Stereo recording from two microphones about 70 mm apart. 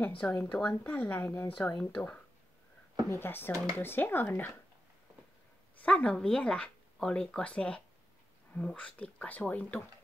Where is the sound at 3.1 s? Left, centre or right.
Left.